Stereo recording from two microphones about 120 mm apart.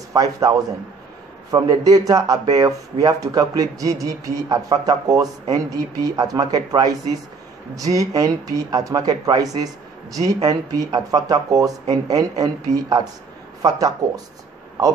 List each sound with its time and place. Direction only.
0.1 s a man's voice: 30° right (ahead or behind)